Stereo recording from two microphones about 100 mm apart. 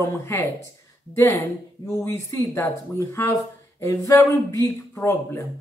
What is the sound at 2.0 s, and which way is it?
A woman's voice, 25° left (ahead or behind).